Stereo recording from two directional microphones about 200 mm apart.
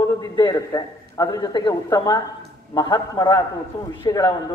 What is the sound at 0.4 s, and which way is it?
A man's voice, 20° left (ahead or behind).